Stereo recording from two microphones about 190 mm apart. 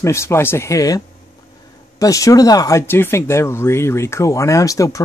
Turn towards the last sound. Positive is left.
turn(degrees=15)  # may be behind; listen again after turning